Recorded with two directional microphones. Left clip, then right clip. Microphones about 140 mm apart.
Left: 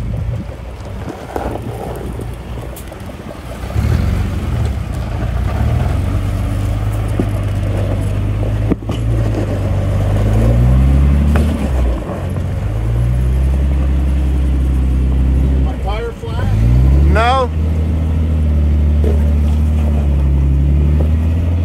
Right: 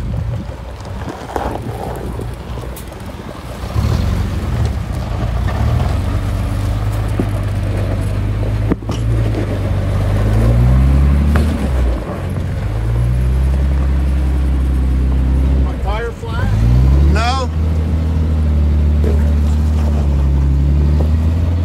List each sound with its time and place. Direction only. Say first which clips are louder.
1.3 s a sound: right 1 dB; 25° right (ahead or behind)
8.7 s vehicle: even; 5° right (ahead or behind)
15.9 s boat: right 1 dB; centre (ahead or behind)
17.1 s vehicle: left 6 dB; 25° right (ahead or behind)